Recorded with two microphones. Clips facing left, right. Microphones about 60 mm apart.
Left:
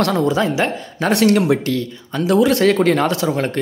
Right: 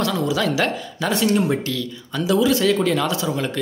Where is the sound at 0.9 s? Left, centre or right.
Left.